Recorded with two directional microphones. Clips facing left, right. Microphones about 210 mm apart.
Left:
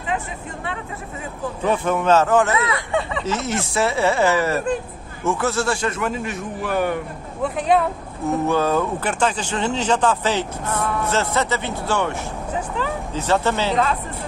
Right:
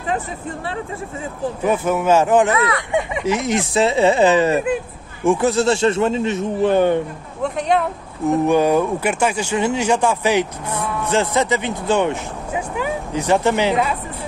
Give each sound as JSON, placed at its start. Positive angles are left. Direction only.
{"t": 1.6, "sound": "speech", "side_deg": -10}
{"t": 2.5, "sound": "speech", "side_deg": 25}
{"t": 2.9, "sound": "speech", "side_deg": -15}
{"t": 7.4, "sound": "speech", "side_deg": 5}
{"t": 8.3, "sound": "speech", "side_deg": -15}